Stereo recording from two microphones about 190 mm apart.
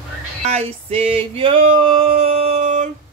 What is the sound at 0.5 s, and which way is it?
Male singing, 30° right (ahead or behind).